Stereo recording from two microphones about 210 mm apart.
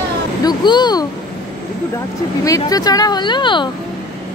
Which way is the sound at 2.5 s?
15° left (ahead or behind).